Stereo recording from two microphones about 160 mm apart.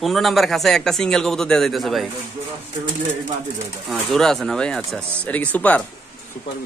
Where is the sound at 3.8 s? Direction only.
Centre (ahead or behind).